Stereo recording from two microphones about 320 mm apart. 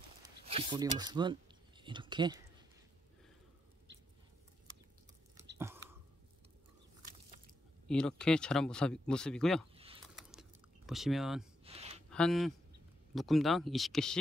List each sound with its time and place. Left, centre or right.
0.5 s speech: centre
7.9 s speech: centre
10.9 s speech: centre
11.6 s a sound: centre
12.1 s speech: centre